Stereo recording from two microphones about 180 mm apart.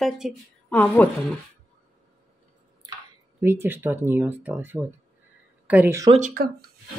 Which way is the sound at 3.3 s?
15° right (ahead or behind).